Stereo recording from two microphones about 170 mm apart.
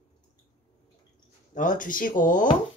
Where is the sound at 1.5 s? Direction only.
50° left (ahead or behind).